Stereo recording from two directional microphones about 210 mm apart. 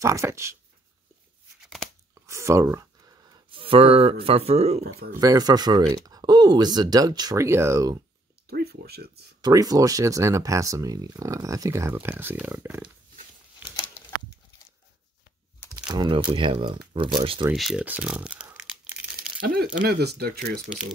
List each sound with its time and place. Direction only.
0.0 s speech: 15° right (ahead or behind)
2.2 s a sound: 15° right (ahead or behind); by 4.8 s 30° right (ahead or behind)
5.1 s speech: 15° right (ahead or behind)
8.5 s speech: 50° right (ahead or behind)
9.4 s speech: 15° right (ahead or behind)
15.9 s speech: 20° right (ahead or behind)
17.5 s speech: 5° right (ahead or behind)
19.4 s speech: 45° right (ahead or behind)